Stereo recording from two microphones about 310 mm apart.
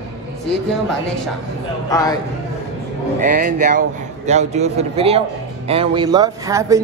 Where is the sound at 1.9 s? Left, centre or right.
Centre.